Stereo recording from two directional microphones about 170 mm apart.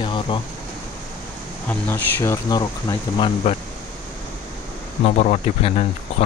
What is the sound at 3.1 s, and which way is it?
Speech, 35° left (ahead or behind).